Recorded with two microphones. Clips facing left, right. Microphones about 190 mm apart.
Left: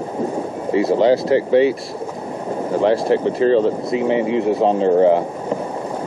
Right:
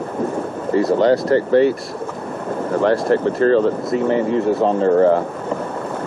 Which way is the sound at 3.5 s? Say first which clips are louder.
Even; 30° left (ahead or behind).